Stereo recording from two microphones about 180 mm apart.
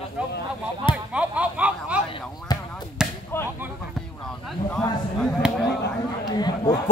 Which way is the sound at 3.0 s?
5° right (ahead or behind).